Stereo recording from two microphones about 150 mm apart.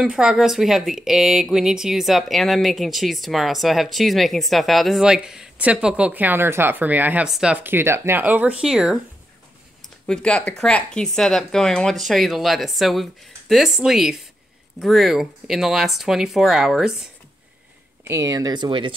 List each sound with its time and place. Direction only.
0.0 s speech: 5° right (ahead or behind)
10.0 s speech: 5° left (ahead or behind)
18.0 s speech: 20° right (ahead or behind)